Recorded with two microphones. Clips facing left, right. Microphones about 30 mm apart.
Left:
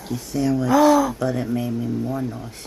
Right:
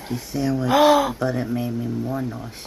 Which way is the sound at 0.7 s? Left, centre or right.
Right.